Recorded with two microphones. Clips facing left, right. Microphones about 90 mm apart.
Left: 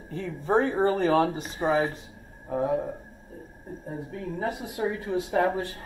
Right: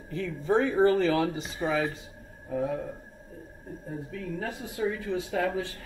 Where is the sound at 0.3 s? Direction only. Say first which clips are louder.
Left 2 dB; 40° left (ahead or behind).